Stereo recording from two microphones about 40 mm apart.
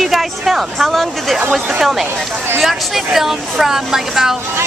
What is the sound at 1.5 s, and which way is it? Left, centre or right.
Speech, centre.